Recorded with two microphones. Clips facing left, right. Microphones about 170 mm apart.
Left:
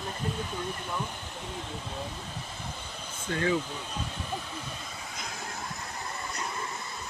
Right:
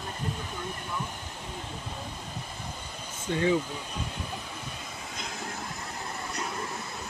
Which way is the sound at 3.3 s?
15° right (ahead or behind).